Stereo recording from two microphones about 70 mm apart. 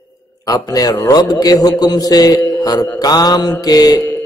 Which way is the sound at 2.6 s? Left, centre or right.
Left.